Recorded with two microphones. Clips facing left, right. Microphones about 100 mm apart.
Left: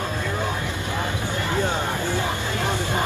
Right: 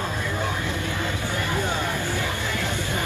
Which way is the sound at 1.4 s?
20° left (ahead or behind).